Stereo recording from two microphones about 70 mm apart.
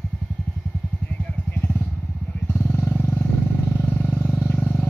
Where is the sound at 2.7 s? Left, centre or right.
Left.